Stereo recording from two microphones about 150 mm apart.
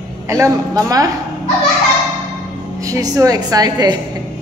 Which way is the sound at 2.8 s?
20° right (ahead or behind).